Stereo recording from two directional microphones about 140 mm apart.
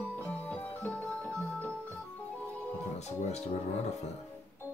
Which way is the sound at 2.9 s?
50° left (ahead or behind).